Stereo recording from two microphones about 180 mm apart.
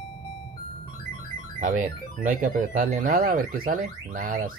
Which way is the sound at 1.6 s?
50° right (ahead or behind).